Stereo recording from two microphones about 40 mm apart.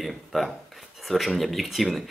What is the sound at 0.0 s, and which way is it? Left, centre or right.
Speech, centre.